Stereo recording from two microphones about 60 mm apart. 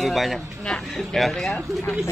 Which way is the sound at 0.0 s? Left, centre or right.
Centre.